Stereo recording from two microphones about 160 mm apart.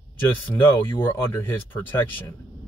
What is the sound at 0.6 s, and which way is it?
Speech, 15° left (ahead or behind).